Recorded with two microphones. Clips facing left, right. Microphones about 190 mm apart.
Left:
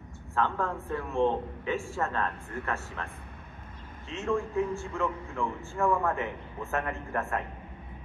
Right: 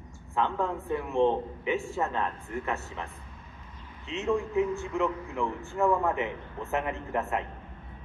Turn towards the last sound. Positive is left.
turn(degrees=-20)  # may be behind; listen again after turning